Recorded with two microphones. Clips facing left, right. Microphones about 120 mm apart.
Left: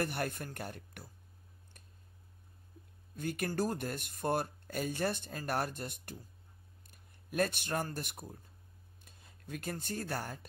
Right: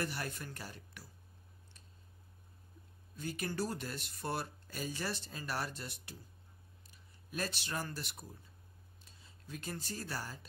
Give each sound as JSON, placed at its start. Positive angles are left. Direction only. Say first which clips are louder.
{"t": 0.0, "sound": "speech", "louder": "left 4 dB", "side_deg": 55}
{"t": 3.2, "sound": "speech", "louder": "left 4 dB", "side_deg": 55}